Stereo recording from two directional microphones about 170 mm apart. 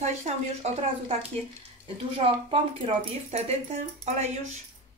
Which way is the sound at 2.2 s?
35° right (ahead or behind).